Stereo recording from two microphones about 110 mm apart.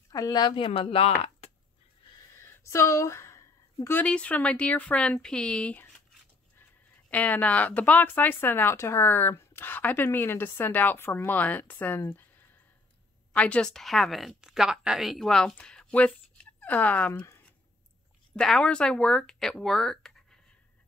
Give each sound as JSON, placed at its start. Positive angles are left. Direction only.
{"t": 0.1, "sound": "speech", "side_deg": 40}
{"t": 2.4, "sound": "a sound", "side_deg": 25}
{"t": 4.0, "sound": "speech", "side_deg": 10}
{"t": 7.1, "sound": "speech", "side_deg": 15}
{"t": 13.3, "sound": "a woman's voice", "side_deg": 10}
{"t": 18.3, "sound": "speech", "side_deg": 5}